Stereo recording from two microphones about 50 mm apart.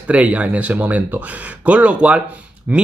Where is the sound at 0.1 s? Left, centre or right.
Right.